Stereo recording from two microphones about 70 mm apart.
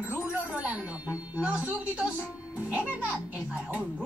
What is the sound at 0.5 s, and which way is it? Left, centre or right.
Music, centre.